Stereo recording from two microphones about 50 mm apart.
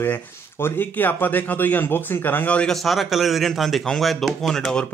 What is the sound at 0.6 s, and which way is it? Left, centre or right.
Speech, left.